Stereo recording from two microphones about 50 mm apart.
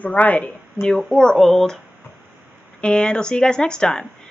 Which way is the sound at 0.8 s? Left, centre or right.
Centre.